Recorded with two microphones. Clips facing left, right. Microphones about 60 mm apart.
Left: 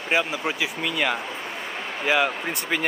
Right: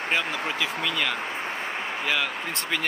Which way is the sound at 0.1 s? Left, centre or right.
Centre.